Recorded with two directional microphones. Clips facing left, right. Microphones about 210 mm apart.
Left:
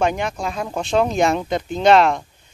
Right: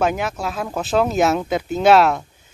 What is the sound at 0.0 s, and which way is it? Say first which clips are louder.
Speech: even; 5° right (ahead or behind).